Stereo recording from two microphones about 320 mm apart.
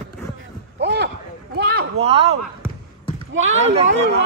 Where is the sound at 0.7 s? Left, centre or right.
Right.